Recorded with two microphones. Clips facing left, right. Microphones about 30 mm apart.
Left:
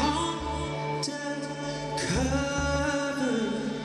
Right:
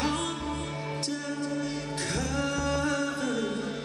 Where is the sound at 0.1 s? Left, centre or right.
Left.